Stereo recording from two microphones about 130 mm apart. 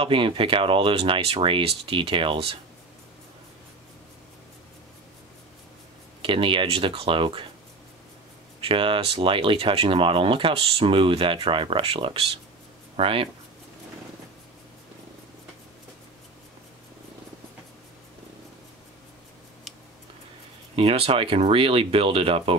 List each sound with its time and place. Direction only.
0.0 s speech: 40° right (ahead or behind)
6.2 s speech: 40° right (ahead or behind)
8.6 s speech: 40° right (ahead or behind)
20.7 s speech: 45° right (ahead or behind)